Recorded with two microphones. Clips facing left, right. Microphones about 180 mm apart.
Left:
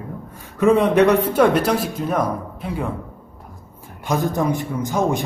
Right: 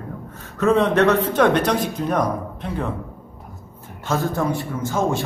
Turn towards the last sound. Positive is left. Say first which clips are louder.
# left 1 dB
turn(degrees=15)  # may be behind; listen again after turning